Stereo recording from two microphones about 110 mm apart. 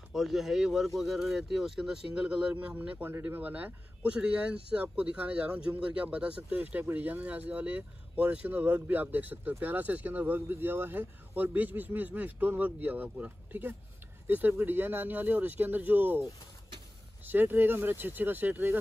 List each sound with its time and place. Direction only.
0.1 s speech: centre (ahead or behind); by 18.8 s 15° right (ahead or behind)